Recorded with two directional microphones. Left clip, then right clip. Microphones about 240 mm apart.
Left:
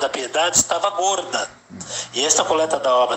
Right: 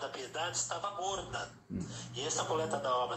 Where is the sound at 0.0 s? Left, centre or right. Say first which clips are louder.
Left 18 dB; left.